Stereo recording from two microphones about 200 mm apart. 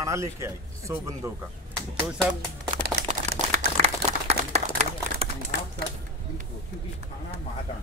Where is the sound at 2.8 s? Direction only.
50° right (ahead or behind).